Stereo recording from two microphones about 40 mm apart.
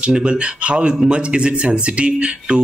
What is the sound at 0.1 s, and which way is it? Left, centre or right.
Speech, right.